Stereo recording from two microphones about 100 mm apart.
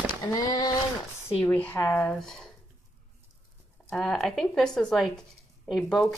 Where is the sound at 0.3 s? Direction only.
40° left (ahead or behind).